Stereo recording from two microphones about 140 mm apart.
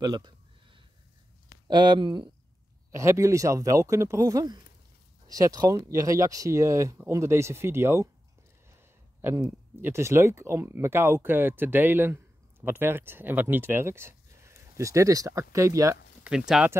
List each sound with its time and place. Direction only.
0.0 s a sound: 30° right (ahead or behind)
1.7 s speech: 30° right (ahead or behind)
2.9 s speech: 20° right (ahead or behind)
9.4 s speech: 15° right (ahead or behind)
16.3 s speech: 5° right (ahead or behind)